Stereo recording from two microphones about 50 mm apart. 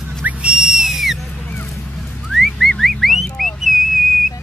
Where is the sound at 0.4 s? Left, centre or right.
Centre.